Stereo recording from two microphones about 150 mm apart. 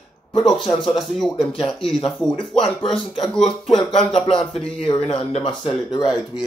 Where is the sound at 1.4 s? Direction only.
35° left (ahead or behind).